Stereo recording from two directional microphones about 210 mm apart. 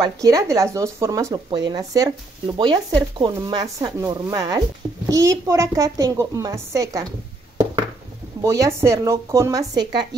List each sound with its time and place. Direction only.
0.0 s a woman's voice: 15° right (ahead or behind)
8.4 s a woman's voice: 15° right (ahead or behind)